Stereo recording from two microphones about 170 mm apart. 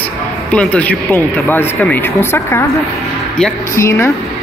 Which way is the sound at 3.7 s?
15° left (ahead or behind).